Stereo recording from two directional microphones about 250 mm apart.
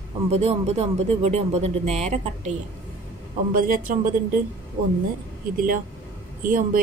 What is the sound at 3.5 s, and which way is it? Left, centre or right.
Speech, right.